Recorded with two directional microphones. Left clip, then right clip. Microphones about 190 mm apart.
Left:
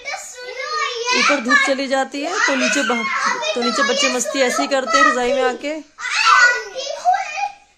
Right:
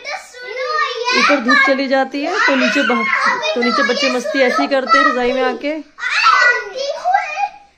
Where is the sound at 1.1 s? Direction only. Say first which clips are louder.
Right 2 dB; 5° left (ahead or behind).